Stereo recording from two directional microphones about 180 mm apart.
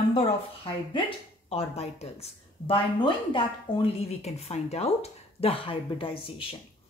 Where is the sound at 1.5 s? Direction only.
35° left (ahead or behind).